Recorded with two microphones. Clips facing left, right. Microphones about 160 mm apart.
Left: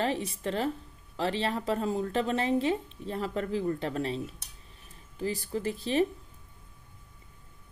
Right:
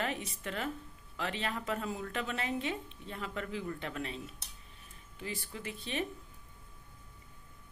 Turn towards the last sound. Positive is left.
turn(degrees=35)  # may be behind; listen again after turning